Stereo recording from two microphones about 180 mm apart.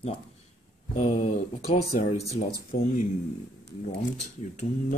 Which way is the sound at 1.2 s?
45° left (ahead or behind).